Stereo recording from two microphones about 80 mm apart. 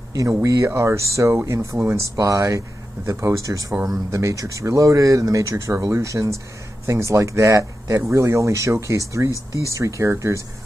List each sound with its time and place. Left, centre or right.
0.4 s speech: right